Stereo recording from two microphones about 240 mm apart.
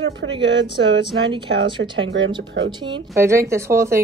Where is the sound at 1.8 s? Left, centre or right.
Right.